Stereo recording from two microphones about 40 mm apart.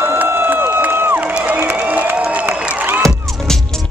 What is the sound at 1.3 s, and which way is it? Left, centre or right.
Music, right.